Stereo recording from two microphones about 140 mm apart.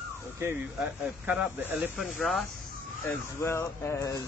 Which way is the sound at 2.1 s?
Centre (ahead or behind).